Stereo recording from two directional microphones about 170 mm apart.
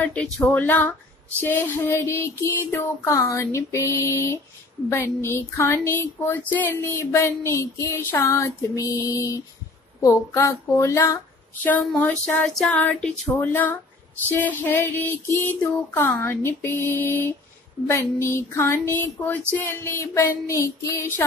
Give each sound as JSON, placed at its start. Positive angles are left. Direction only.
{"t": 0.0, "sound": "speech", "side_deg": 5}